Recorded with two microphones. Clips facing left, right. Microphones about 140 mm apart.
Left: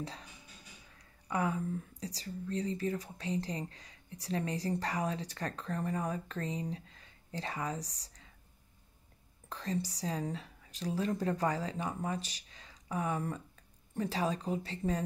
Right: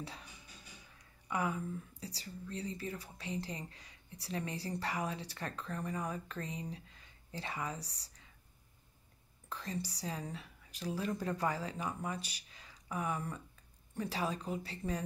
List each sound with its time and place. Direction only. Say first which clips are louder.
0.9 s speech: left 3 dB; 35° left (ahead or behind)
9.5 s speech: left 5 dB; 35° left (ahead or behind)